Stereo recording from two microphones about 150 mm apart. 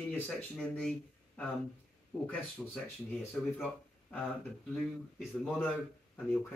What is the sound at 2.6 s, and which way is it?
Speech, 5° left (ahead or behind).